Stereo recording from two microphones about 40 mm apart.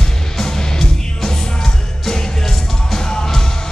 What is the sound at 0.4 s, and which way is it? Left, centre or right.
Music, centre.